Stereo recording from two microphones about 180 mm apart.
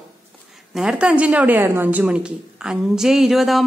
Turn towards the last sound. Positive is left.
turn(degrees=0)  # may be behind; listen again after turning